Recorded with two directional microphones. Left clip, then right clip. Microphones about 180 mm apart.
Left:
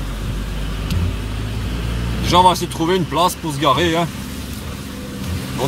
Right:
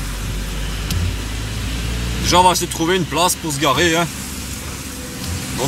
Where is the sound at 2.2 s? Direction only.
5° left (ahead or behind).